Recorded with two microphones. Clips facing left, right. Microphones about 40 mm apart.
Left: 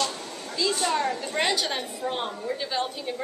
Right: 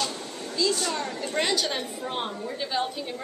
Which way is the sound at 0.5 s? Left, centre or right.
Centre.